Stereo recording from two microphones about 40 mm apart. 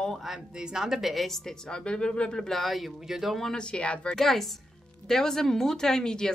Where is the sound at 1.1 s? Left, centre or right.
Centre.